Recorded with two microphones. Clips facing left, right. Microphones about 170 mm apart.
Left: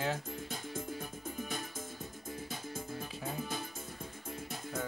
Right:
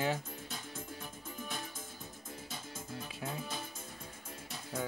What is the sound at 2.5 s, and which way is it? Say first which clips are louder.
Music: left 2 dB; 50° left (ahead or behind).